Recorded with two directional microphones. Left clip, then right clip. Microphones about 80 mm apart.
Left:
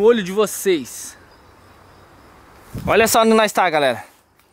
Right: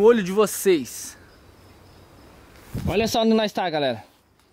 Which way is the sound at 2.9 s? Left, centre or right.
Right.